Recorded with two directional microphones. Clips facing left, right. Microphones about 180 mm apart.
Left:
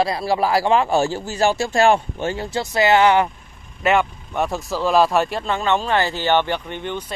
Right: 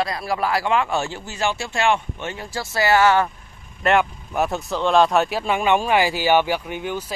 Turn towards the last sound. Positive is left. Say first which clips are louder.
# right 1 dB
turn(degrees=-5)  # may be behind; listen again after turning